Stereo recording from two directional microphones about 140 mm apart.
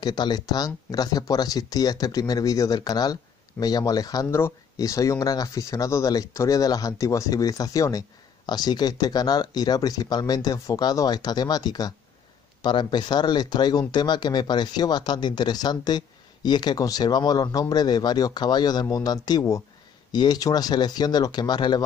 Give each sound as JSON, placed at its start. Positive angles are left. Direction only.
{"t": 0.0, "sound": "speech", "side_deg": 30}